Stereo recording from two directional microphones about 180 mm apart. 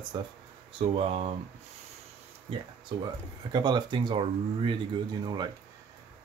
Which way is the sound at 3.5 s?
25° right (ahead or behind).